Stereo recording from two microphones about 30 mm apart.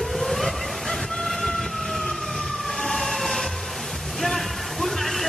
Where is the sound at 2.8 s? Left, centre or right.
Centre.